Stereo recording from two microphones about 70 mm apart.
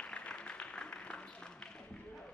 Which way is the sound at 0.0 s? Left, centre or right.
Centre.